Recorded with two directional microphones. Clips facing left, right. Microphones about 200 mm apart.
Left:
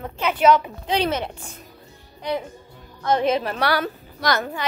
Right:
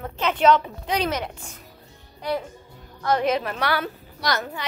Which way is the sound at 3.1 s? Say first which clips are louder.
Left 2 dB; 25° left (ahead or behind).